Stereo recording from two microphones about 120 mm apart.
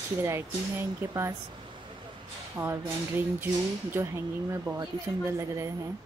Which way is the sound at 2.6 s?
20° right (ahead or behind).